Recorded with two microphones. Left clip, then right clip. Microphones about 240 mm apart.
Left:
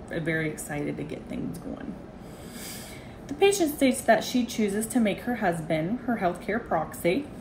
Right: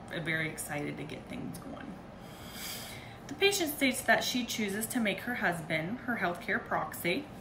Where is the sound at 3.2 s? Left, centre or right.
Left.